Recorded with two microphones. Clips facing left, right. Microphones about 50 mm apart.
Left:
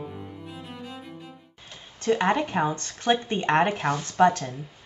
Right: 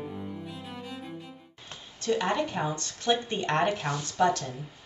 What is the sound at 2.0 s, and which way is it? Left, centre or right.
Speech, left.